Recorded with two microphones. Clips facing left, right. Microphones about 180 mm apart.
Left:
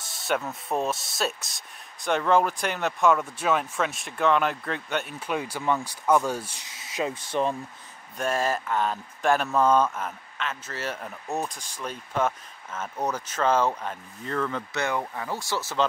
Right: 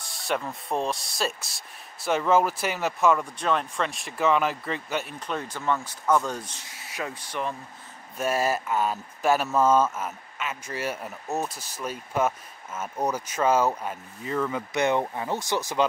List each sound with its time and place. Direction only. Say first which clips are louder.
0.1 s speech: left 1 dB; centre (ahead or behind)
6.7 s speech: left 5 dB; 20° left (ahead or behind)
8.2 s speech: right 1 dB; 10° right (ahead or behind)